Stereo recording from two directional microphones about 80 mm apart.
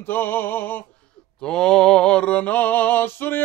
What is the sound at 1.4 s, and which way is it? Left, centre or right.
Mantra, centre.